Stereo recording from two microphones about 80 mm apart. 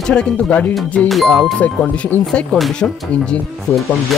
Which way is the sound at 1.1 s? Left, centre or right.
Centre.